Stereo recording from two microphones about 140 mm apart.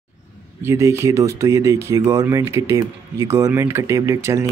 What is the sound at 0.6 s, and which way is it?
Speech, 20° right (ahead or behind).